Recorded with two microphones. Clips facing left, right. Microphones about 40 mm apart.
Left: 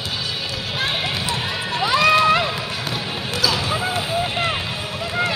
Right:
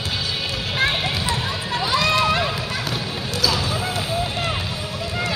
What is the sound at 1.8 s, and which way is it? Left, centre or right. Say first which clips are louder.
Music: left 4 dB; left.